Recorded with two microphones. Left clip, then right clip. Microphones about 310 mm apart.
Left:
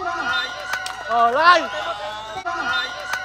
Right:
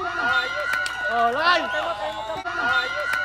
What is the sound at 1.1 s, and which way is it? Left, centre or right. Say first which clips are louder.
Speech: left 6 dB; left.